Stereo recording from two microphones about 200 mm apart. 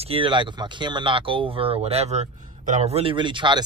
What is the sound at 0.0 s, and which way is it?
A man's voice, 25° right (ahead or behind).